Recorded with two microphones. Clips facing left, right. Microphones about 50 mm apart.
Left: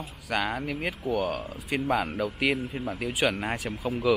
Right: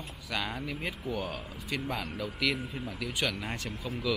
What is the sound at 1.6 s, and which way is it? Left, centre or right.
Speech, centre.